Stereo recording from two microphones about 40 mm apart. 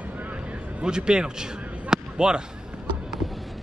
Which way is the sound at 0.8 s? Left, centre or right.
Right.